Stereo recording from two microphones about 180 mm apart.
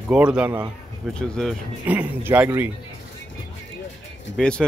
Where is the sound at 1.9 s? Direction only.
10° right (ahead or behind).